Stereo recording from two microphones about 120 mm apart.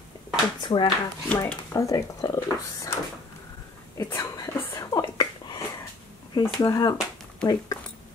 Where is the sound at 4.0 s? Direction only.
25° left (ahead or behind).